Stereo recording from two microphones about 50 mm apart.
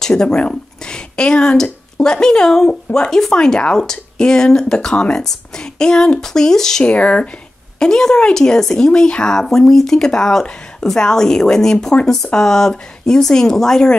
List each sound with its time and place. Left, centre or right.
0.0 s speech: centre
6.8 s speech: left
7.8 s speech: centre